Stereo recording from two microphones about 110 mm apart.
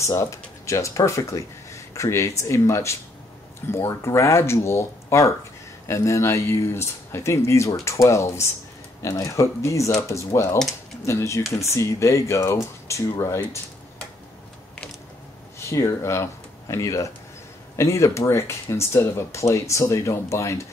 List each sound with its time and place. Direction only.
0.0 s speech: 30° left (ahead or behind)
15.6 s speech: 25° left (ahead or behind)